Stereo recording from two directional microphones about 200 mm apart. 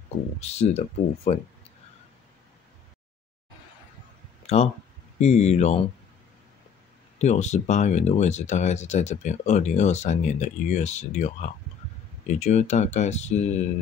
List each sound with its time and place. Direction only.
0.4 s speech: 30° left (ahead or behind)
4.4 s a sound: 30° left (ahead or behind)
5.2 s speech: 35° left (ahead or behind)
7.2 s speech: 35° left (ahead or behind)